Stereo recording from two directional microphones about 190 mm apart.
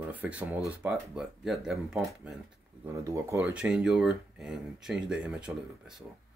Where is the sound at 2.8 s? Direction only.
15° right (ahead or behind).